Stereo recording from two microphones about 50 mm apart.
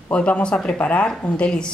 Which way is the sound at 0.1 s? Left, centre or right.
Left.